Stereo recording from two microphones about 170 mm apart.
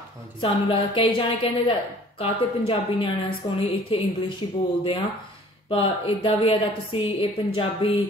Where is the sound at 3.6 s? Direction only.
30° left (ahead or behind).